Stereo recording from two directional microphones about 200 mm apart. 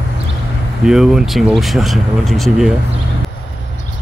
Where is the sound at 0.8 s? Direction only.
Centre (ahead or behind).